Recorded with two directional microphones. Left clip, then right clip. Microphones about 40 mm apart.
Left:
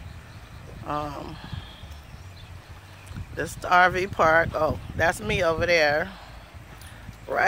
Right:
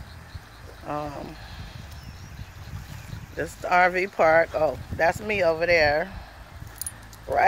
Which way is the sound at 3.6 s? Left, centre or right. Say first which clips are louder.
Left 1 dB; centre.